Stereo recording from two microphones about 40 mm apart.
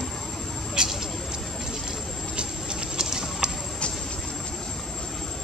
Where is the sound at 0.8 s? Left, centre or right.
Right.